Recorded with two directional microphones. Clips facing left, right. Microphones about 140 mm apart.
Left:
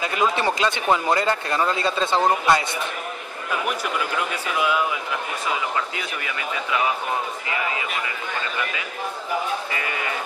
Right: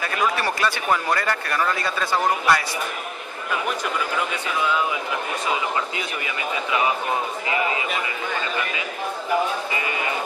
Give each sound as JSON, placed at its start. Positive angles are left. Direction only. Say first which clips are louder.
{"t": 0.0, "sound": "speech", "louder": "left 2 dB", "side_deg": 20}
{"t": 5.9, "sound": "speech", "louder": "right 1 dB", "side_deg": -20}